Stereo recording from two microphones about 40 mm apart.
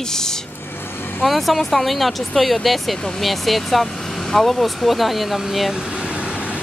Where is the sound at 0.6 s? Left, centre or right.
Left.